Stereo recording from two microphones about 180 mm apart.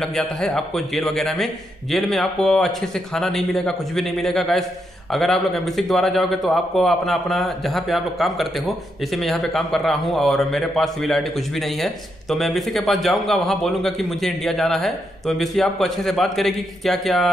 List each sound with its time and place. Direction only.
0.0 s a man's voice: 5° left (ahead or behind)